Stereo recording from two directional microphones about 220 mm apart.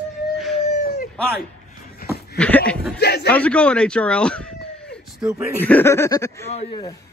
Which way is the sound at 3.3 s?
5° left (ahead or behind).